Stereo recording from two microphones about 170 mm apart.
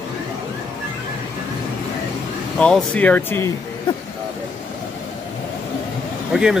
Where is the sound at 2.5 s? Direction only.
5° left (ahead or behind).